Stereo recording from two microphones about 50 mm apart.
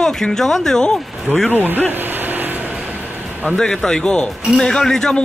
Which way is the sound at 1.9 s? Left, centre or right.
Right.